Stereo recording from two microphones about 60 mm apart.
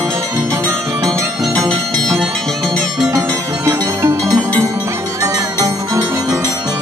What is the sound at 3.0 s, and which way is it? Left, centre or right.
Music, right.